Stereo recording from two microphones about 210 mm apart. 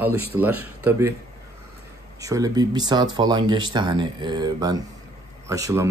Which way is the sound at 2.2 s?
15° right (ahead or behind).